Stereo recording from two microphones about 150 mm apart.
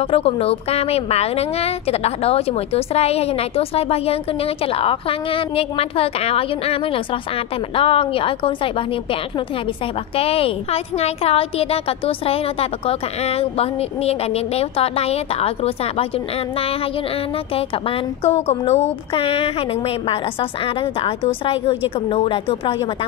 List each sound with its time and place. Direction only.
0.0 s a woman's voice: 40° left (ahead or behind)
10.1 s a woman's voice: 40° left (ahead or behind)
17.6 s a woman's voice: 40° left (ahead or behind)